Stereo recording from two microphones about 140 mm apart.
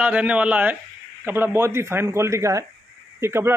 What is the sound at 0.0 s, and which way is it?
A man's voice, 10° right (ahead or behind).